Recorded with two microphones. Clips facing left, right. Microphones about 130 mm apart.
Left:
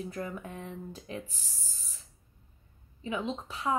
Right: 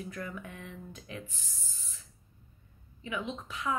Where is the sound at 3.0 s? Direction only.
30° left (ahead or behind).